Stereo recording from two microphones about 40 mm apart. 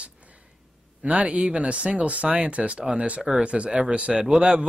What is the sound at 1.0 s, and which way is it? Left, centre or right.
Speech, right.